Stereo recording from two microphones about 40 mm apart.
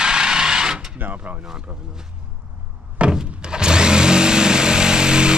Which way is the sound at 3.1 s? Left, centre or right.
Right.